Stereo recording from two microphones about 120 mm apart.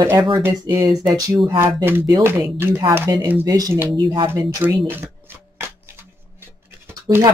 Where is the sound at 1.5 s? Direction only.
20° right (ahead or behind).